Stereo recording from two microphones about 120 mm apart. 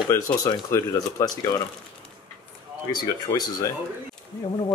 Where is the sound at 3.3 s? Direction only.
35° left (ahead or behind).